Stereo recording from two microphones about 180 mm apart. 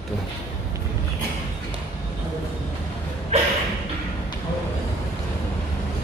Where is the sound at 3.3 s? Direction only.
40° right (ahead or behind).